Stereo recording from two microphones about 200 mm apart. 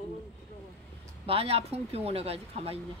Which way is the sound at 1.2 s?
30° right (ahead or behind).